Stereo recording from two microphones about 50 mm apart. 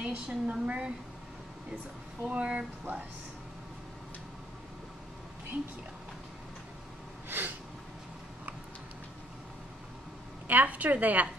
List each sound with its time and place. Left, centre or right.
0.0 s a woman's voice: right
2.2 s a woman's voice: right
7.2 s gasp: right
10.5 s a woman's voice: right